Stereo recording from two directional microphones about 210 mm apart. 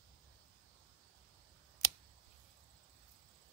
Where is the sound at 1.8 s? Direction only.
15° right (ahead or behind).